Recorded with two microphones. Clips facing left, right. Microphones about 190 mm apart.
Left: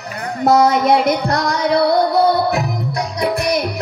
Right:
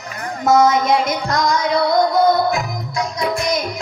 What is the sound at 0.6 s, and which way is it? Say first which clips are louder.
Child singing: left 2 dB; 60° left (ahead or behind).